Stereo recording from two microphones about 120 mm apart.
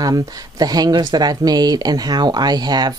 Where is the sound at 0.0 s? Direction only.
30° right (ahead or behind).